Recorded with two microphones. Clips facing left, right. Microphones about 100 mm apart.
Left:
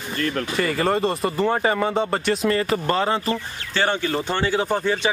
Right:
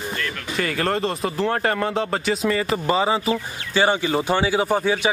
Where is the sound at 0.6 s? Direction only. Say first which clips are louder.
Left 1 dB; centre (ahead or behind).